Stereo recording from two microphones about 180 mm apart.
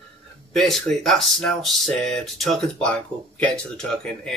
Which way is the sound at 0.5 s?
Centre (ahead or behind).